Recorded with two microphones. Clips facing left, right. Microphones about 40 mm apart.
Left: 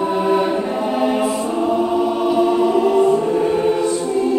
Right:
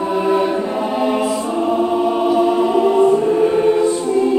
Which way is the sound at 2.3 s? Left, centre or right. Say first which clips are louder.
Left 1 dB; centre.